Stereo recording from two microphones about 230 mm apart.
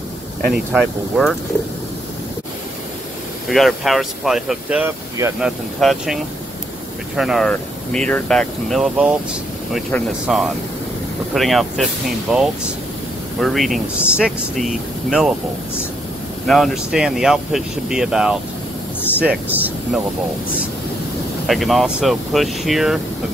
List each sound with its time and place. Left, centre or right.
0.7 s speech: centre
3.4 s speech: centre
5.8 s speech: centre
16.4 s speech: centre
21.5 s speech: centre